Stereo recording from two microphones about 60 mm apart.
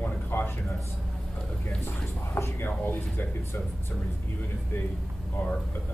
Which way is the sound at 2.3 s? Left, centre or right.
Left.